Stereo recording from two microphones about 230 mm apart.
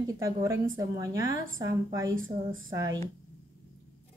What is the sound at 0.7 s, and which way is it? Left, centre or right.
Speech, centre.